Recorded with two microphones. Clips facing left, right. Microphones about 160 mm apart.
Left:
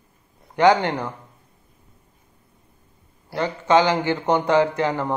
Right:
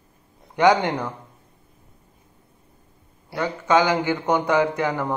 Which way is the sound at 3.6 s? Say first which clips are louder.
Left 1 dB; 10° right (ahead or behind).